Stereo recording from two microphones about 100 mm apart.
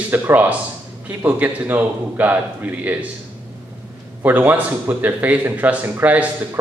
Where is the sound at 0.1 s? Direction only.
20° right (ahead or behind).